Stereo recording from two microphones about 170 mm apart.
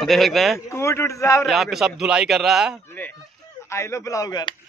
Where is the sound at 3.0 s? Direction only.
10° left (ahead or behind).